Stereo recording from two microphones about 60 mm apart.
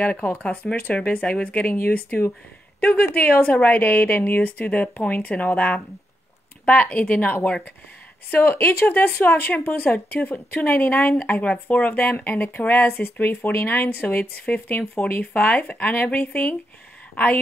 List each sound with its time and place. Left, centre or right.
0.0 s a woman's voice: left